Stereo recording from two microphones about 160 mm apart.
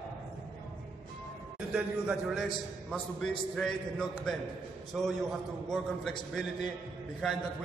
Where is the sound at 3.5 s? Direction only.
5° left (ahead or behind).